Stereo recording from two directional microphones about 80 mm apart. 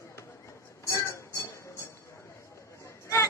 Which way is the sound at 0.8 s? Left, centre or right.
Left.